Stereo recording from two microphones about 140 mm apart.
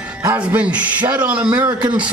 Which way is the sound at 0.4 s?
10° right (ahead or behind).